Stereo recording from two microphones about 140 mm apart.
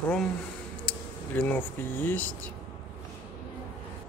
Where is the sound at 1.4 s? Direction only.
10° left (ahead or behind).